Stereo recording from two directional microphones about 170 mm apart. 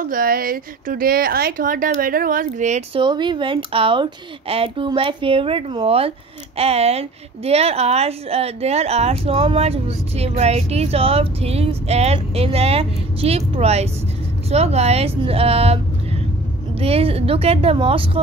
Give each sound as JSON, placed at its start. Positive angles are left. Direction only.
{"t": 0.0, "sound": "speech", "side_deg": -55}
{"t": 3.0, "sound": "speech", "side_deg": -25}